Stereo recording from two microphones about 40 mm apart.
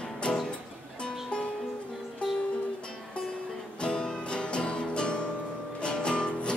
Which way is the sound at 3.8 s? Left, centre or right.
Left.